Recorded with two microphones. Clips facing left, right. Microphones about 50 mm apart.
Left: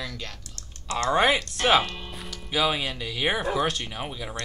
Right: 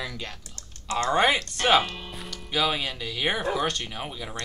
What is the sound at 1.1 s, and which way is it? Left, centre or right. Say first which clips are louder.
Speech: left 1 dB; centre.